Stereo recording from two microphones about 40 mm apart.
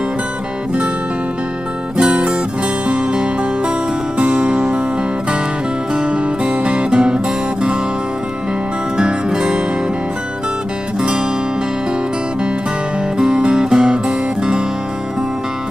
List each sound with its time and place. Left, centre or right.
2.0 s music: right
5.9 s music: right
8.9 s music: centre
11.0 s music: right
13.4 s music: centre